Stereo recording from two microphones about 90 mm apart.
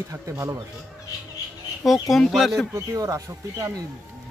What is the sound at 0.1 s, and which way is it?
Speech, 35° right (ahead or behind).